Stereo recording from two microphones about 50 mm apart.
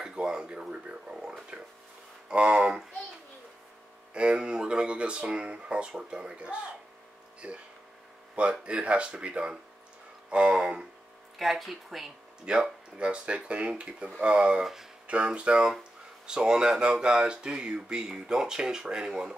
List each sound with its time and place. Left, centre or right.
0.0 s a sound: centre
2.2 s speech: centre
4.1 s speech: centre
11.3 s speech: centre
12.9 s speech: right
14.6 s speech: centre
15.0 s speech: right